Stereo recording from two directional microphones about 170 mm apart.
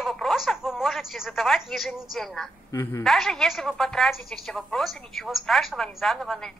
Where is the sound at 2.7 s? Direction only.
15° left (ahead or behind).